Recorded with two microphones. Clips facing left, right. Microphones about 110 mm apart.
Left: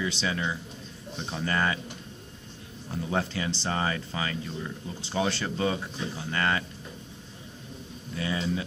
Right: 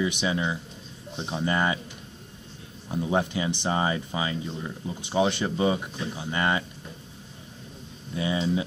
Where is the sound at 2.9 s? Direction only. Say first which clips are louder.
Right 4 dB; 20° right (ahead or behind).